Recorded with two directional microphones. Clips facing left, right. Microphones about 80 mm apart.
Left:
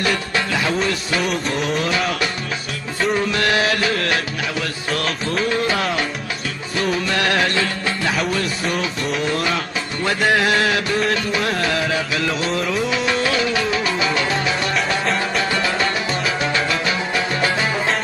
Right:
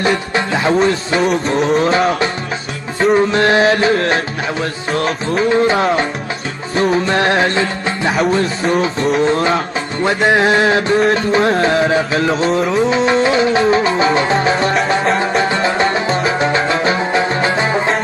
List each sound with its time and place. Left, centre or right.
0.0 s music: right
15.1 s music: right